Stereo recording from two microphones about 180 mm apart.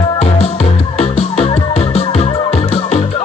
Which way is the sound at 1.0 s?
35° left (ahead or behind).